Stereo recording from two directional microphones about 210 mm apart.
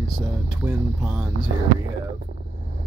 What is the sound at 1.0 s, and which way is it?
Speech, 5° right (ahead or behind).